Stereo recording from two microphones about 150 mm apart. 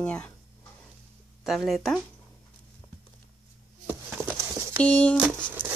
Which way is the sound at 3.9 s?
15° right (ahead or behind).